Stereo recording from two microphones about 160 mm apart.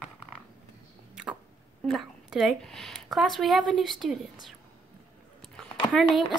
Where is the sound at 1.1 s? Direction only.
5° right (ahead or behind).